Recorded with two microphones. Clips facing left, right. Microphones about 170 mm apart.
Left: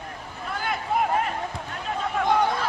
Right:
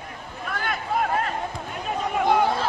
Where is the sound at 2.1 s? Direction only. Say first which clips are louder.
Right 2 dB; 10° right (ahead or behind).